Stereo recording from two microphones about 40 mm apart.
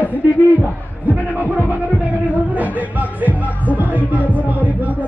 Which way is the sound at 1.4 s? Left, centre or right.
Right.